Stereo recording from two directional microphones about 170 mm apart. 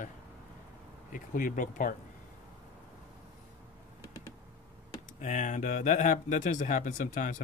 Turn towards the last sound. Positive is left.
turn(degrees=50)  # may be behind; listen again after turning